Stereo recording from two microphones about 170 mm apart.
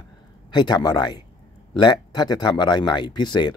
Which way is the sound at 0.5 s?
25° left (ahead or behind).